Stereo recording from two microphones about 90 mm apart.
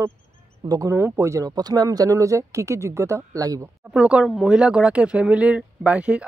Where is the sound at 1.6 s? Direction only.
50° right (ahead or behind).